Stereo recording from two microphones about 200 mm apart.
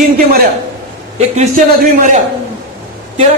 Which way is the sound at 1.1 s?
35° right (ahead or behind).